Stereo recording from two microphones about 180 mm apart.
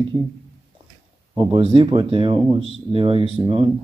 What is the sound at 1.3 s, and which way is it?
A man's voice, 25° right (ahead or behind).